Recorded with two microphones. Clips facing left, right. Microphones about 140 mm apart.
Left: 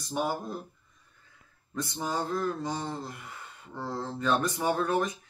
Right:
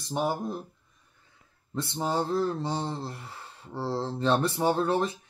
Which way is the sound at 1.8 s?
30° right (ahead or behind).